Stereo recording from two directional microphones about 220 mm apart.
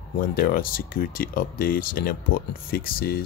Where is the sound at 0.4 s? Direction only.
40° left (ahead or behind).